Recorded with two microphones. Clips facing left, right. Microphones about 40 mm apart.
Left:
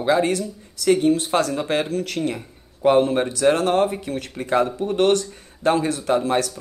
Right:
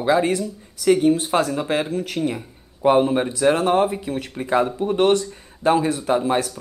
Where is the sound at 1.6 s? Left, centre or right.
Centre.